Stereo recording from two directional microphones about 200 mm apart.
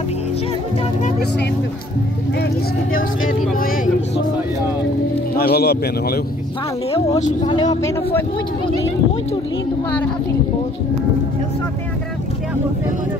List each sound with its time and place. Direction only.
3.5 s speech: 45° left (ahead or behind)
5.4 s a man's voice: 50° left (ahead or behind)
6.9 s speech: 25° left (ahead or behind)